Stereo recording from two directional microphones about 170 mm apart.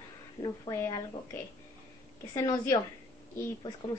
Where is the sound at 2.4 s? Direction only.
20° left (ahead or behind).